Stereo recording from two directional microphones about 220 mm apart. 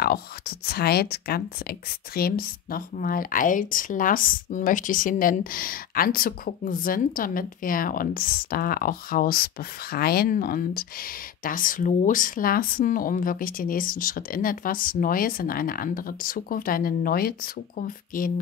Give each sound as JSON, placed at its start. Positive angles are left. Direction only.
{"t": 0.0, "sound": "speech", "side_deg": 45}